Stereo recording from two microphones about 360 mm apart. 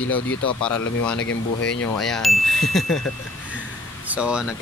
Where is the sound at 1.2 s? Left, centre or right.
Left.